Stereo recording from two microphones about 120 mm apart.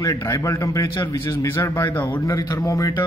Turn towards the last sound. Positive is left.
turn(degrees=30)  # may be behind; listen again after turning